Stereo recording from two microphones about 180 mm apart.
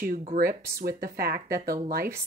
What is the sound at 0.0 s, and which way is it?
Speech, 45° right (ahead or behind).